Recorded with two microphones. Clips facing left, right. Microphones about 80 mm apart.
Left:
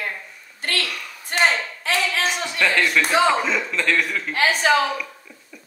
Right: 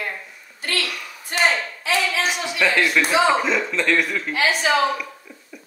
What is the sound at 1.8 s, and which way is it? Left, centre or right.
Hands, left.